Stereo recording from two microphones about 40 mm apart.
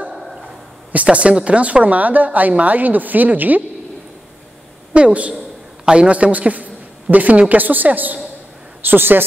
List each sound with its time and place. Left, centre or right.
0.1 s a sound: centre
1.1 s a woman's voice: right
4.9 s a woman's voice: right
8.8 s a man's voice: right